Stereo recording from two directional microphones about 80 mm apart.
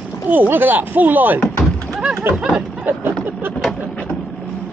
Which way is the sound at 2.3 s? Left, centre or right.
Centre.